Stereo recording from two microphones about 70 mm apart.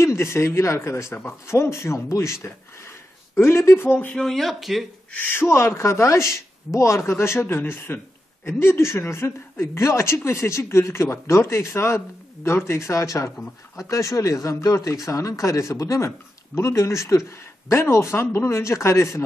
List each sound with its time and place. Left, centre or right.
0.0 s a woman's voice: left
3.3 s a woman's voice: left
4.1 s speech: centre
5.3 s a woman's voice: left